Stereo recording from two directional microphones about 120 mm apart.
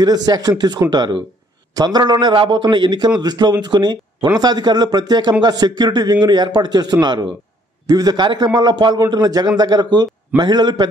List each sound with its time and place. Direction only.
0.0 s a man's voice: 35° right (ahead or behind)